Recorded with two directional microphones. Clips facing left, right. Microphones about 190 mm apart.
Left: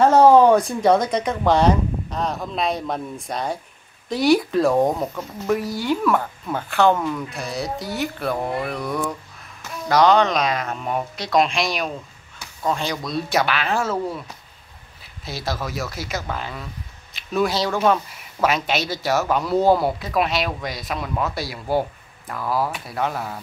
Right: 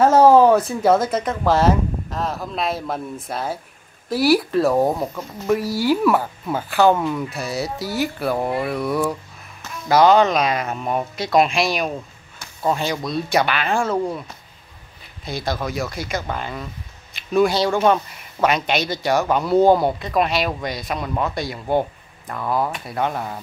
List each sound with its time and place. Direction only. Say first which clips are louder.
0.0 s speech: even; 10° right (ahead or behind)
15.2 s speech: right 3 dB; 5° left (ahead or behind)